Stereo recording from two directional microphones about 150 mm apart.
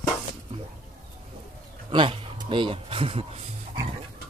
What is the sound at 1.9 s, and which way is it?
Speech, 35° right (ahead or behind).